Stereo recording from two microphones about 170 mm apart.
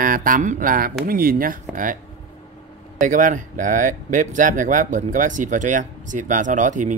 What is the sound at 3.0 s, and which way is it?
Speech, 50° right (ahead or behind).